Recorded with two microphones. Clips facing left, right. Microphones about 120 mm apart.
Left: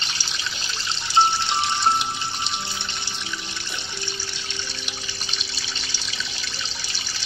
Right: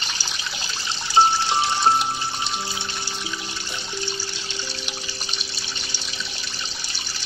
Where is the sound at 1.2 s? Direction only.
35° right (ahead or behind).